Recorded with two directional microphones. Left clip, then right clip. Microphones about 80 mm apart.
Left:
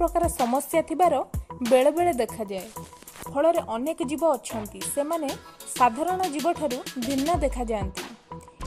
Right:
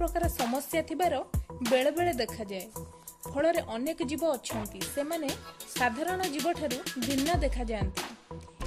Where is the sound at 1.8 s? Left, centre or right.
Left.